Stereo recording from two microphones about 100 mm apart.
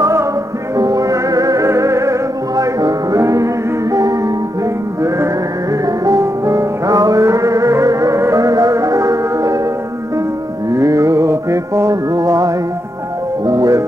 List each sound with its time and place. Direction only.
0.0 s music: 30° right (ahead or behind)
5.9 s music: 35° right (ahead or behind)
10.7 s music: 30° right (ahead or behind)